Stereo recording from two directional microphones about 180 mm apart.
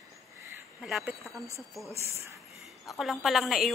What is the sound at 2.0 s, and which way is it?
Speech, 15° right (ahead or behind).